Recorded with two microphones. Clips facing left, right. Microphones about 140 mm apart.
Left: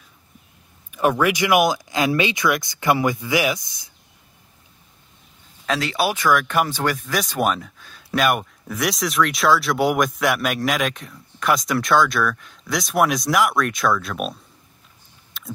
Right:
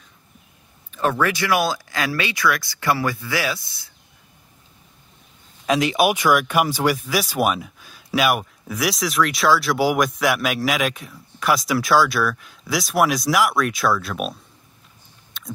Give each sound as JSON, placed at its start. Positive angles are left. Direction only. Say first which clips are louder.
{"t": 0.9, "sound": "speech", "louder": "left 2 dB", "side_deg": 15}
{"t": 5.7, "sound": "speech", "louder": "right 4 dB", "side_deg": -15}
{"t": 15.3, "sound": "a sound", "louder": "even", "side_deg": 0}